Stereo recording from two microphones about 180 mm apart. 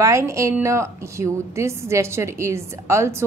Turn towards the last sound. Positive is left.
turn(degrees=-15)  # may be behind; listen again after turning